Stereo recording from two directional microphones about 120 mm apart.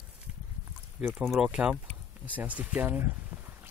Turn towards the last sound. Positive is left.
turn(degrees=-15)  # may be behind; listen again after turning